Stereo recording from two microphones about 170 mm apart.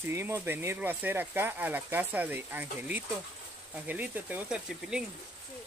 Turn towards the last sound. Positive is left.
turn(degrees=-5)  # may be behind; listen again after turning